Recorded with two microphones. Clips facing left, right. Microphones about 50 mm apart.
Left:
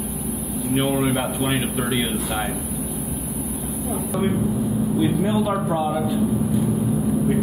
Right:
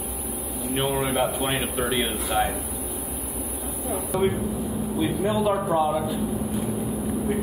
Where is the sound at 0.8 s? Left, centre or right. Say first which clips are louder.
Left 2 dB; centre.